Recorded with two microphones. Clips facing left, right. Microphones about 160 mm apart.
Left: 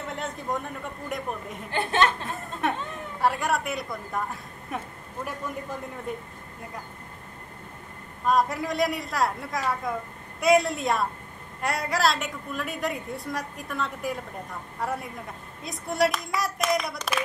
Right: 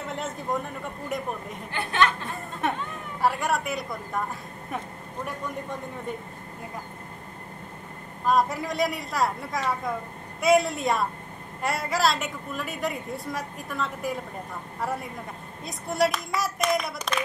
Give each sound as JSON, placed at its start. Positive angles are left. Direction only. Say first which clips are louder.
{"t": 0.1, "sound": "a woman's voice", "louder": "right 1 dB", "side_deg": 0}
{"t": 1.7, "sound": "speech", "louder": "left 1 dB", "side_deg": 25}
{"t": 2.2, "sound": "a woman's voice", "louder": "even", "side_deg": 0}
{"t": 8.3, "sound": "a woman's voice", "louder": "even", "side_deg": 0}